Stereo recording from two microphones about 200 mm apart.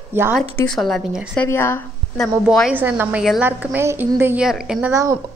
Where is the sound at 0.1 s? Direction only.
10° right (ahead or behind).